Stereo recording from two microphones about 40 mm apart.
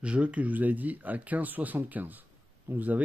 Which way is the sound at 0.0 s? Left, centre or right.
Right.